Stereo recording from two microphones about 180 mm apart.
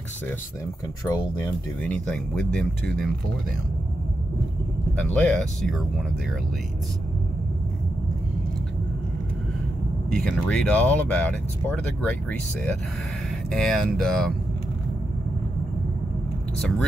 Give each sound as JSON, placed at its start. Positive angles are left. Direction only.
{"t": 1.0, "sound": "speech", "side_deg": 20}
{"t": 1.8, "sound": "speech", "side_deg": 5}
{"t": 5.1, "sound": "speech", "side_deg": 5}
{"t": 10.1, "sound": "speech", "side_deg": 5}